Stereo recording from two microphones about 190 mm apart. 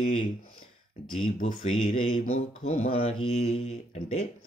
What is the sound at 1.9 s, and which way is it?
Speech, 90° left.